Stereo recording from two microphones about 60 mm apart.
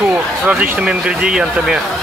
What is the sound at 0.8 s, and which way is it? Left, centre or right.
Speech, centre.